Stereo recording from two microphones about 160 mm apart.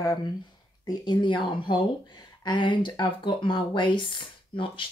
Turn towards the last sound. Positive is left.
turn(degrees=30)  # may be behind; listen again after turning